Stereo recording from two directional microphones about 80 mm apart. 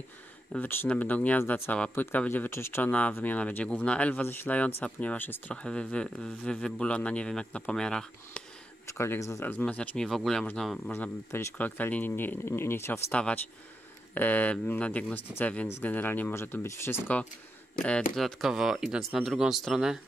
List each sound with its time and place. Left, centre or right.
0.5 s speech: centre; by 2.8 s left
2.8 s speech: centre
5.5 s speech: centre
8.8 s speech: left
9.5 s speech: centre
10.0 s speech: centre
11.0 s speech: left
13.1 s speech: centre; by 17.0 s left
17.8 s speech: centre
18.2 s speech: centre